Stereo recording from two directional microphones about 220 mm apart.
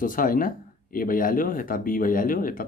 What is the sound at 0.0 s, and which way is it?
Speech, 40° left (ahead or behind).